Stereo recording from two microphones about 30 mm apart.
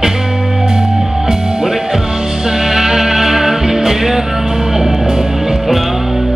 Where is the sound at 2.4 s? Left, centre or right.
Centre.